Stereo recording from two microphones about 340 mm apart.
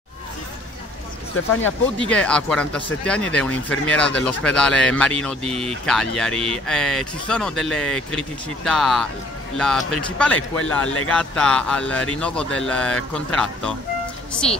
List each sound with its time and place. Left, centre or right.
2.0 s speech: centre
5.4 s speech: centre
5.9 s speech: centre